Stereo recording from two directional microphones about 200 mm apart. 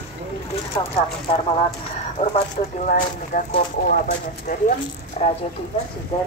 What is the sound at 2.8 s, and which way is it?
Speech, 40° left (ahead or behind).